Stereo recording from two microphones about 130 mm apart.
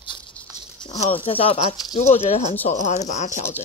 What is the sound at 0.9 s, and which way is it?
Speech, 50° left (ahead or behind).